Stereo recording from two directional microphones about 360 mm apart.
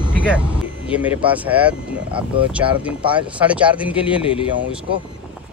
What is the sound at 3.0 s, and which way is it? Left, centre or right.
Speech, centre.